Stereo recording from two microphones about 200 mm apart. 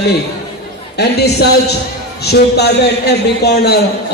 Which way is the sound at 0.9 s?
55° left (ahead or behind).